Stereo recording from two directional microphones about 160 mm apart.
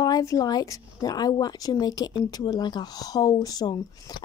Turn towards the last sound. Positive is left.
turn(degrees=25)  # may be behind; listen again after turning